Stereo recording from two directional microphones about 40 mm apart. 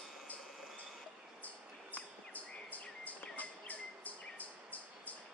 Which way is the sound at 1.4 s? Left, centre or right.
Left.